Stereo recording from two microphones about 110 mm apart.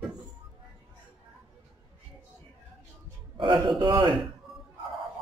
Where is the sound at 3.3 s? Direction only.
50° right (ahead or behind).